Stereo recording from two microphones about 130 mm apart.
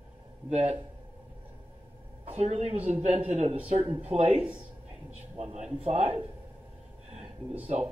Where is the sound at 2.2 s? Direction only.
55° right (ahead or behind).